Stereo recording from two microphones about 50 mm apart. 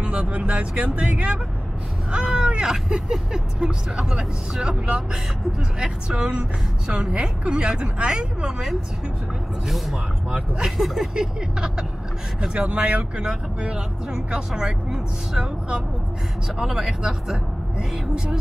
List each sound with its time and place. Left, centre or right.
0.0 s a woman's voice: centre
9.7 s speech: centre